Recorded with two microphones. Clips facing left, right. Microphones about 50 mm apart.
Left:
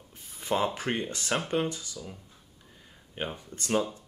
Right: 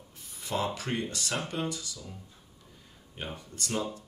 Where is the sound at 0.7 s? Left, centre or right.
Left.